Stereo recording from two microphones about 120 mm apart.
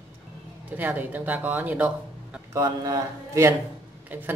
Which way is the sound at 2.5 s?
30° right (ahead or behind).